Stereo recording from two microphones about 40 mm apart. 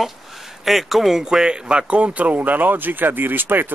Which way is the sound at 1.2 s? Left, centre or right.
Centre.